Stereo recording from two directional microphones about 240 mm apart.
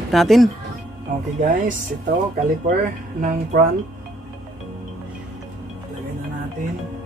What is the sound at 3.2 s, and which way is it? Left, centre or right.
Speech, right.